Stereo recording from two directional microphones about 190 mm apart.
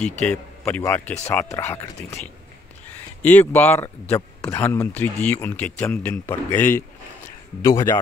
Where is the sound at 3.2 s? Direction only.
10° left (ahead or behind).